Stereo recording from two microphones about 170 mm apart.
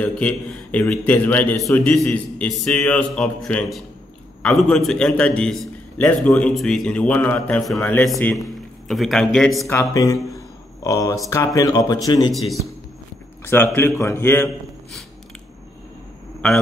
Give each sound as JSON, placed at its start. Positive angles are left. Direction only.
{"t": 0.0, "sound": "a man's voice", "side_deg": 10}
{"t": 9.7, "sound": "speech", "side_deg": 15}
{"t": 12.3, "sound": "a man's voice", "side_deg": 0}
{"t": 13.7, "sound": "a man's voice", "side_deg": 15}